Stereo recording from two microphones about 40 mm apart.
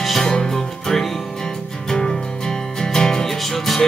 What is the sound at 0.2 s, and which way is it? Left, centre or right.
Music, centre.